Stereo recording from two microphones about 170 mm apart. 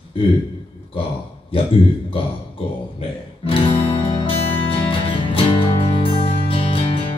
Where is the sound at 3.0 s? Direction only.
30° left (ahead or behind).